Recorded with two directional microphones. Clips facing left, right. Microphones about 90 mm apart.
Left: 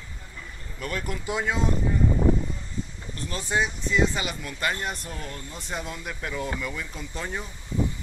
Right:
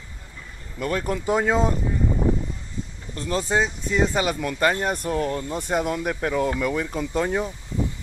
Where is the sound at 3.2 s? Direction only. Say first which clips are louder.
Right 5 dB; 40° right (ahead or behind); by 7.4 s 55° right (ahead or behind).